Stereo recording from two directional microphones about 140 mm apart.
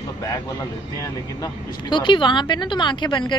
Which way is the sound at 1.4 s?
35° left (ahead or behind).